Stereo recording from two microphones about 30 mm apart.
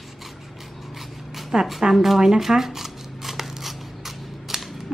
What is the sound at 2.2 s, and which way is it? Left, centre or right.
Shuffling cards, centre.